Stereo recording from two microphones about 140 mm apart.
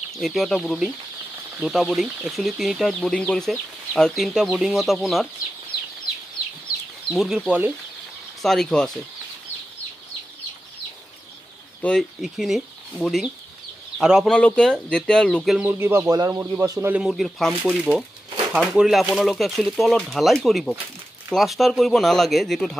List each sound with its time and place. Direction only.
0.1 s speech: centre (ahead or behind)
7.1 s speech: centre (ahead or behind)
8.4 s speech: 5° left (ahead or behind)
11.8 s speech: 5° left (ahead or behind)
14.3 s speech: 5° left (ahead or behind)
15.6 s speech: 15° right (ahead or behind)
16.9 s speech: centre (ahead or behind)